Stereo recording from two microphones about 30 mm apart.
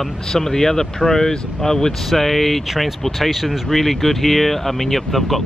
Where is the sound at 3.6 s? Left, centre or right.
Centre.